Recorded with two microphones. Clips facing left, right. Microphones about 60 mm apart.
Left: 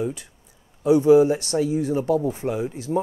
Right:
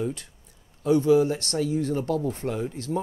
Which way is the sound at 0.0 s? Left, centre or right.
Centre.